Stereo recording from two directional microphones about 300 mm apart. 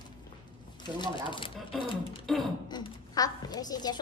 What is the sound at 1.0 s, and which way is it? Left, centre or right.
Speech, centre.